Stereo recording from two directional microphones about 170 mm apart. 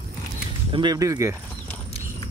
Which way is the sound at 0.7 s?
25° right (ahead or behind).